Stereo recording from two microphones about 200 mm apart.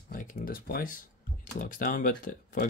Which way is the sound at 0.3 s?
45° left (ahead or behind).